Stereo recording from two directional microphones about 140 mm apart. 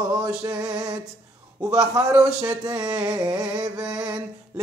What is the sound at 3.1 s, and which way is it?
Speech, 25° right (ahead or behind).